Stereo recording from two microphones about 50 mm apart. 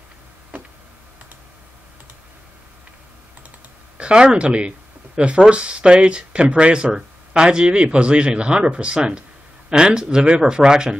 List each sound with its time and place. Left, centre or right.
4.0 s speech: centre